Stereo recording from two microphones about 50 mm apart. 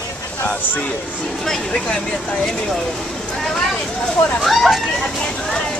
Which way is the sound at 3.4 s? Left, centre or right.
Centre.